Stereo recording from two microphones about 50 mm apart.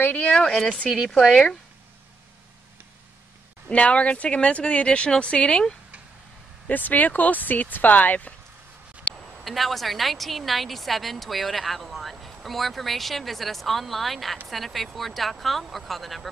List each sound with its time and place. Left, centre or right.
0.0 s speech: left
0.4 s speech: centre
3.7 s a woman's voice: left
6.7 s speech: left
9.4 s a woman's voice: centre